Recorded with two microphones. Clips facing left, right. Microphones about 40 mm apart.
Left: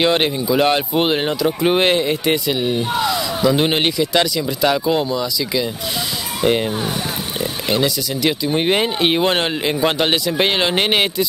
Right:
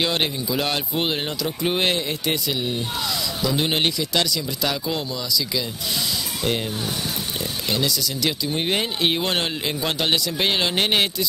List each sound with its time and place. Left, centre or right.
0.0 s speech: left
7.7 s speech: centre